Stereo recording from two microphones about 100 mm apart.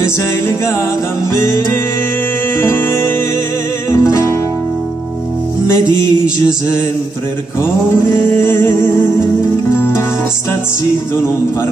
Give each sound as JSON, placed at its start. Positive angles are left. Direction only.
{"t": 2.6, "sound": "music", "side_deg": 25}
{"t": 5.7, "sound": "music", "side_deg": 25}
{"t": 8.4, "sound": "music", "side_deg": 25}
{"t": 9.8, "sound": "music", "side_deg": 20}